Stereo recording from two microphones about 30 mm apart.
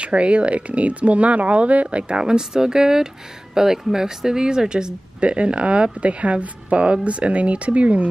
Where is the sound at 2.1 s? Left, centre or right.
Right.